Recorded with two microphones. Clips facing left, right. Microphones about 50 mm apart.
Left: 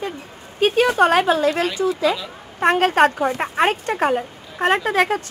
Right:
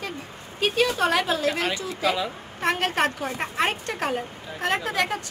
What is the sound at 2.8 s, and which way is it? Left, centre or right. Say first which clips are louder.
Speech: left 9 dB; left.